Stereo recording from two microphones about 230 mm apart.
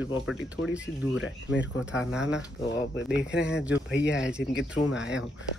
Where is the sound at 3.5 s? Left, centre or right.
Centre.